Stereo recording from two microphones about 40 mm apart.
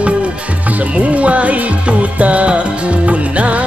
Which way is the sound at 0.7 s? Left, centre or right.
Right.